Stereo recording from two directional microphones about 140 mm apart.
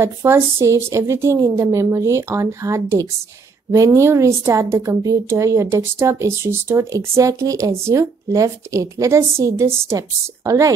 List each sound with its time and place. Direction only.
0.0 s a woman's voice: 20° right (ahead or behind)